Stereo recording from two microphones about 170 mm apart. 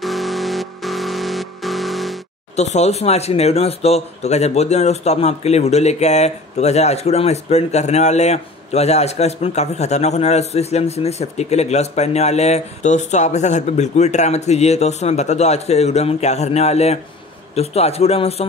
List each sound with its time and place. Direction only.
0.0 s music: centre (ahead or behind)
2.5 s speech: 40° left (ahead or behind)